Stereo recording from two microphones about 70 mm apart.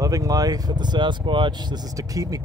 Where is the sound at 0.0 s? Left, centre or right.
Right.